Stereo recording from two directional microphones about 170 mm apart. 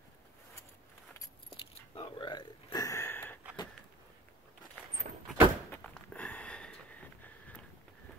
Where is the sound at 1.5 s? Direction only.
30° left (ahead or behind); by 3.4 s 10° left (ahead or behind).